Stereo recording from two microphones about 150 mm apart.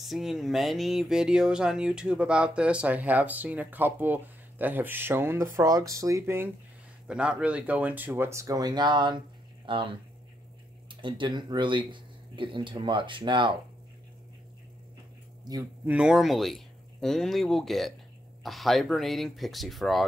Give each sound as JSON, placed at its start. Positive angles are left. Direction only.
{"t": 0.0, "sound": "speech", "side_deg": 0}
{"t": 15.5, "sound": "speech", "side_deg": -25}
{"t": 15.8, "sound": "speech", "side_deg": -10}